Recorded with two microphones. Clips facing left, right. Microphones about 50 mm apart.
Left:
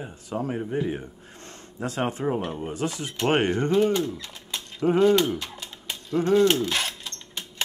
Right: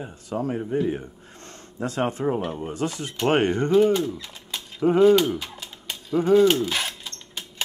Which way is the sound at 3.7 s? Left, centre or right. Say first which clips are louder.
Right 5 dB; centre.